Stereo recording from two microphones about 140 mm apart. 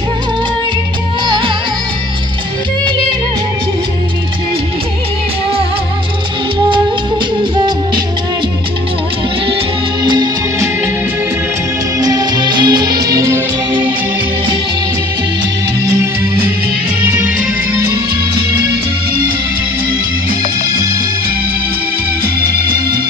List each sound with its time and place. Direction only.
1.2 s music: 35° right (ahead or behind)
12.0 s music: 25° right (ahead or behind)